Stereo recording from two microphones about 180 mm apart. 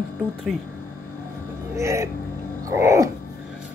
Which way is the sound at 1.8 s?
15° right (ahead or behind).